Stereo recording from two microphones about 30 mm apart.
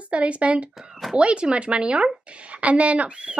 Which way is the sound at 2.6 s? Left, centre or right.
Right.